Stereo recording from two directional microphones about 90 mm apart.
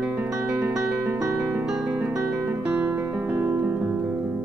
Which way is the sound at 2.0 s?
20° right (ahead or behind).